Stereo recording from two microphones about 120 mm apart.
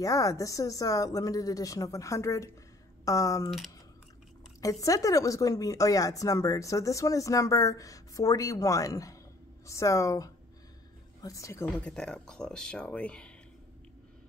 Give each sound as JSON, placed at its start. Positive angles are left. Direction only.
{"t": 0.0, "sound": "speech", "side_deg": 25}
{"t": 3.4, "sound": "speech", "side_deg": 0}
{"t": 4.6, "sound": "speech", "side_deg": 30}
{"t": 11.8, "sound": "speech", "side_deg": 5}